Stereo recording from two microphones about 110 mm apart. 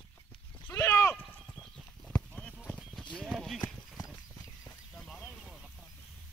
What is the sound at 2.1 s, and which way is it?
Clip-clop, 10° left (ahead or behind).